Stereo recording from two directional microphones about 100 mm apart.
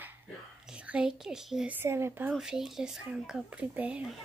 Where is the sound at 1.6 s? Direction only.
20° right (ahead or behind).